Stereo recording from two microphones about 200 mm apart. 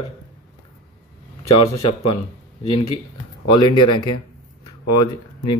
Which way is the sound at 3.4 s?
20° left (ahead or behind).